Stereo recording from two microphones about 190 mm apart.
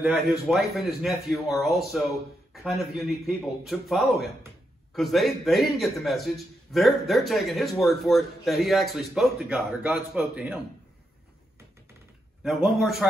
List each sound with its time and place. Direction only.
0.0 s a man's voice: 5° right (ahead or behind)
12.4 s a man's voice: centre (ahead or behind)